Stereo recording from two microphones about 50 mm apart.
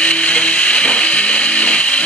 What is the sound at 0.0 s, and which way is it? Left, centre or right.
Music, left.